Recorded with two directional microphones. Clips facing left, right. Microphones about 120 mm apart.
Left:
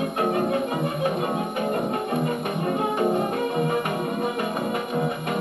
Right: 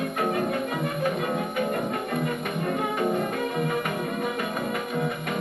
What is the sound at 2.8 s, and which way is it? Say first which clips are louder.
Music: left 4 dB; 25° left (ahead or behind).